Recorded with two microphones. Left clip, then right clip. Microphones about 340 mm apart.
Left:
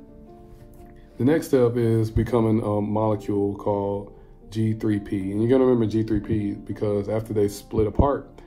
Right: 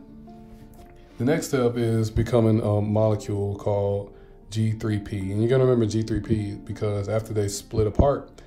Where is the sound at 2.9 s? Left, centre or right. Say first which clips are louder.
Even; right.